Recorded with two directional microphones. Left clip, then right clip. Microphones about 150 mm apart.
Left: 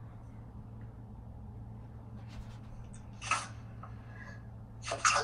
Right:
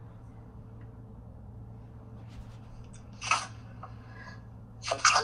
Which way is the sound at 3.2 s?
70° right (ahead or behind).